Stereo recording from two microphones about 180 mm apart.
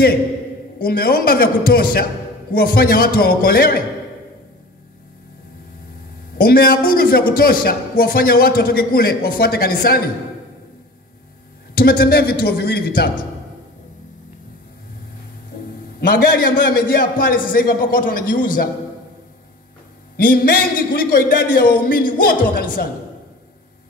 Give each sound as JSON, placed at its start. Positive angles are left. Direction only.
{"t": 0.8, "sound": "a man's voice", "side_deg": 55}
{"t": 6.3, "sound": "a man's voice", "side_deg": 55}
{"t": 11.7, "sound": "a man's voice", "side_deg": 55}
{"t": 16.1, "sound": "a man's voice", "side_deg": 55}
{"t": 20.2, "sound": "a man's voice", "side_deg": 55}